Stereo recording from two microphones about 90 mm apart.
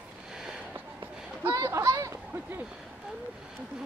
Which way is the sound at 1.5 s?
40° right (ahead or behind).